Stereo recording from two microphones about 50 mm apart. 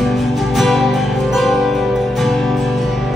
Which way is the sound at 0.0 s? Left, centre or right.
Centre.